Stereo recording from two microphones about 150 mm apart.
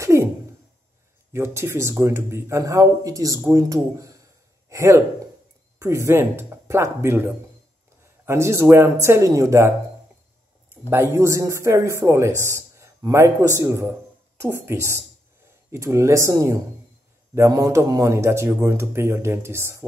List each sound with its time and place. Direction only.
0.0 s a sound: 20° right (ahead or behind)
1.3 s a man's voice: 15° right (ahead or behind)
10.9 s a man's voice: 20° right (ahead or behind)